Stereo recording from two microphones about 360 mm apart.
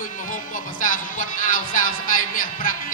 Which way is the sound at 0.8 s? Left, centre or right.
Left.